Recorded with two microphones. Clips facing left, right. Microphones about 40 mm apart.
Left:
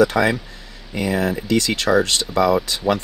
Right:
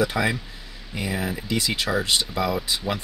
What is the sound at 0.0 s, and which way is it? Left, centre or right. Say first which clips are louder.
Speech: left 7 dB; centre.